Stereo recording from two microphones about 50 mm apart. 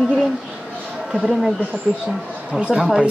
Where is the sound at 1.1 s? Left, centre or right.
Centre.